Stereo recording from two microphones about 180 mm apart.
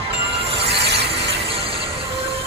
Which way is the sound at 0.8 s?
65° right (ahead or behind).